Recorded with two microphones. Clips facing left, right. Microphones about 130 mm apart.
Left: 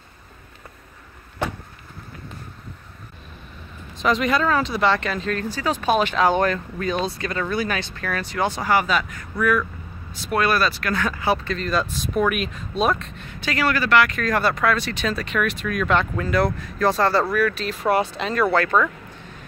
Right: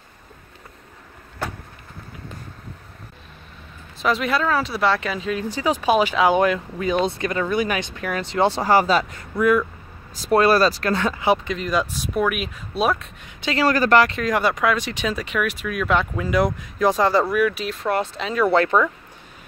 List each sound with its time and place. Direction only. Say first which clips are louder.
4.0 s speech: left 1 dB; 5° right (ahead or behind); by 9.7 s 25° right (ahead or behind)
10.2 s speech: right 5 dB; 35° right (ahead or behind)
13.7 s speech: right 3 dB; 40° right (ahead or behind)
14.1 s speech: right 1 dB; 15° right (ahead or behind)
17.7 s speech: left 2 dB; 5° left (ahead or behind)
18.5 s speech: right 3 dB; 20° right (ahead or behind)